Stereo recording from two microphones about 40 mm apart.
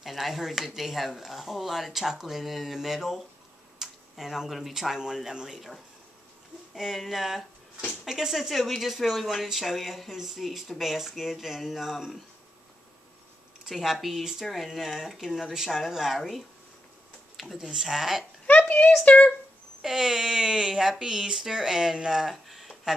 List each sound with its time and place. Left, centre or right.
0.0 s speech: centre
6.7 s speech: centre
13.7 s speech: centre
17.4 s a sound: centre
17.7 s speech: centre
18.5 s a sound: left
19.0 s speech: left
19.8 s speech: centre
22.3 s a sound: centre